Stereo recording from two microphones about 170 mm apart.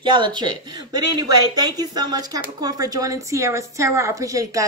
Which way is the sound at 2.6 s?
20° right (ahead or behind).